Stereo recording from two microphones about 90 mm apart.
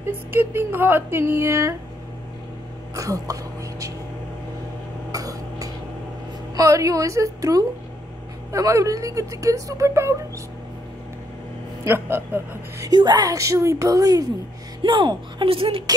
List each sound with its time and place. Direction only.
0.3 s speech: 25° right (ahead or behind)
3.0 s speech: 40° right (ahead or behind)
5.1 s cough: 40° right (ahead or behind)
6.5 s speech: 40° right (ahead or behind)
11.8 s speech: 25° right (ahead or behind)
12.8 s speech: 50° right (ahead or behind)
14.8 s speech: 60° right (ahead or behind); by 15.8 s 90° right